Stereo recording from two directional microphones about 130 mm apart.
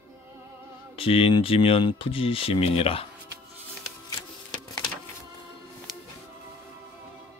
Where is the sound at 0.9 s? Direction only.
45° left (ahead or behind).